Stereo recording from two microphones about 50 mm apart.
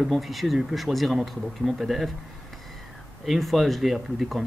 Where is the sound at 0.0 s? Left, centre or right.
Centre.